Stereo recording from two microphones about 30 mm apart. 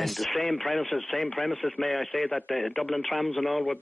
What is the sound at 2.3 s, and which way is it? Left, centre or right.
Speech, left.